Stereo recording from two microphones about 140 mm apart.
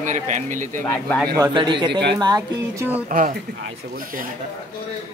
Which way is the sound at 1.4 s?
35° right (ahead or behind).